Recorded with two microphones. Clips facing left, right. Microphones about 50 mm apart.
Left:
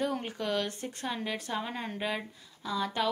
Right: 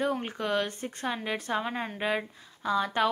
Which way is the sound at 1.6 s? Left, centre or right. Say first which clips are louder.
Right 3 dB; centre.